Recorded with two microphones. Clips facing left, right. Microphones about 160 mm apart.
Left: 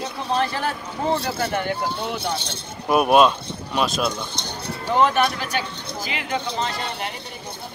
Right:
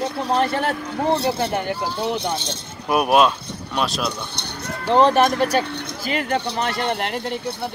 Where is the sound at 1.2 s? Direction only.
25° right (ahead or behind).